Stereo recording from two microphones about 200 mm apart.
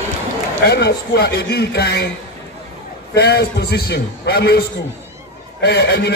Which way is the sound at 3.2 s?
55° left (ahead or behind).